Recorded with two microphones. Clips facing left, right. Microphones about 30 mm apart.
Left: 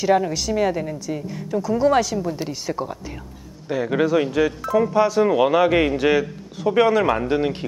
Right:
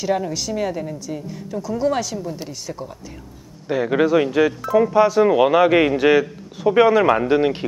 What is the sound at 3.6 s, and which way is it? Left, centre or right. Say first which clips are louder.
Speech: right 2 dB; centre.